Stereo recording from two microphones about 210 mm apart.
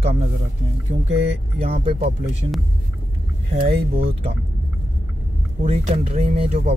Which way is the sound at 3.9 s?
25° right (ahead or behind).